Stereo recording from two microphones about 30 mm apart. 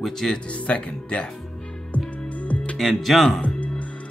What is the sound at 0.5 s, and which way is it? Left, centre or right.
Speech, left.